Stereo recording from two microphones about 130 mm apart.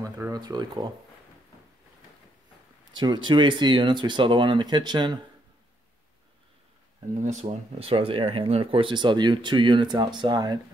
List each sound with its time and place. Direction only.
0.0 s speech: 30° right (ahead or behind)
3.0 s speech: 35° right (ahead or behind)
7.2 s speech: 60° right (ahead or behind); by 10.6 s 35° right (ahead or behind)